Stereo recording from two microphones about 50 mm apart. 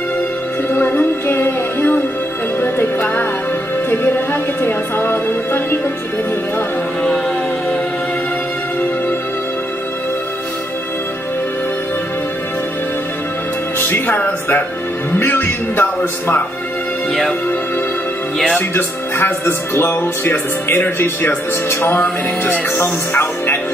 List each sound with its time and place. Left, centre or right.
0.7 s music: left
13.7 s music: left
15.1 s speech: left
18.8 s speech: left
22.8 s music: left